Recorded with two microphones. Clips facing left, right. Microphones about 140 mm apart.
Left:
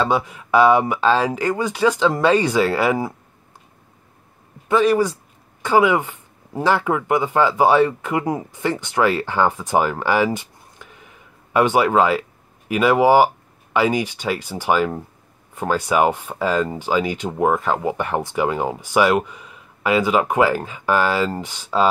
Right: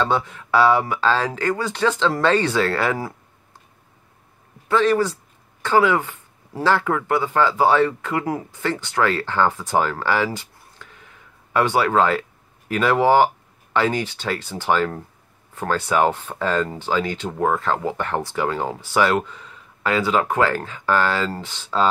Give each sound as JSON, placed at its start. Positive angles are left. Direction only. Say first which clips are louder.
{"t": 0.0, "sound": "speech", "louder": "left 2 dB", "side_deg": 10}
{"t": 4.6, "sound": "speech", "louder": "left 2 dB", "side_deg": 10}